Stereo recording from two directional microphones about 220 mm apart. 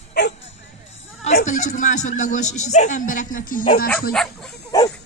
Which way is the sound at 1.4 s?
35° left (ahead or behind).